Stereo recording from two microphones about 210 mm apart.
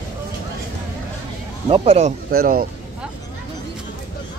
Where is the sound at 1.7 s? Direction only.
30° right (ahead or behind).